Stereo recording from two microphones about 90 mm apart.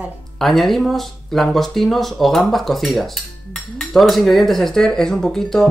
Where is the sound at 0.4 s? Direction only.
Centre (ahead or behind).